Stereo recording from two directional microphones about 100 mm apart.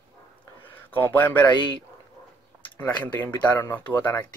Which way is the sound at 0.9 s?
20° left (ahead or behind).